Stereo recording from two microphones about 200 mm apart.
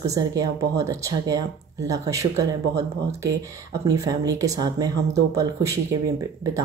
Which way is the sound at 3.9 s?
15° right (ahead or behind).